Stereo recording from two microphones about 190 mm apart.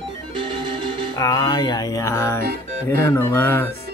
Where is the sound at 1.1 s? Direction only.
20° left (ahead or behind).